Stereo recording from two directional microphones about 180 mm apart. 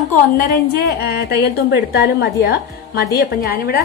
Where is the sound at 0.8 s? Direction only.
60° left (ahead or behind).